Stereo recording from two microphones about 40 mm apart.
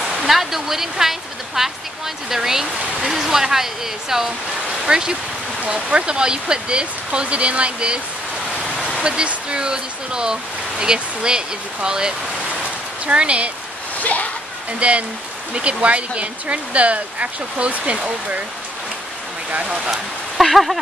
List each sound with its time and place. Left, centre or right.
0.2 s speech: centre; by 8.0 s right
9.0 s speech: right
13.9 s speech: left
14.8 s speech: right
19.6 s speech: right
20.3 s speech: centre